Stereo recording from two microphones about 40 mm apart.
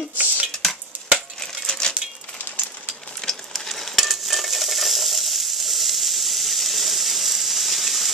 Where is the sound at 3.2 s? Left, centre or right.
Centre.